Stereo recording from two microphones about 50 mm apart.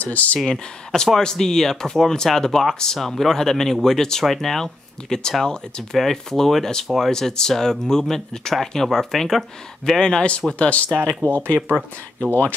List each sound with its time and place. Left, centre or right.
0.0 s speech: left
0.5 s speech: centre
10.6 s speech: left
11.0 s speech: centre
11.2 s speech: left